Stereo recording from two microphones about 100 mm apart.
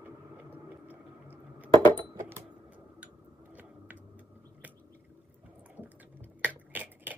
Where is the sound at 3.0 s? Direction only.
15° right (ahead or behind).